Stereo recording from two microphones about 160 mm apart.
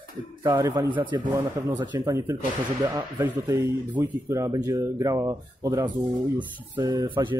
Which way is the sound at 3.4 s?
15° right (ahead or behind).